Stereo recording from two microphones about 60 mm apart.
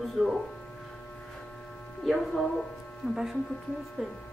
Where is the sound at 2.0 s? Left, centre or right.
Centre.